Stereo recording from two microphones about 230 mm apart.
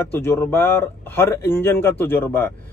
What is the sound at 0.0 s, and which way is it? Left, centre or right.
Speech, centre.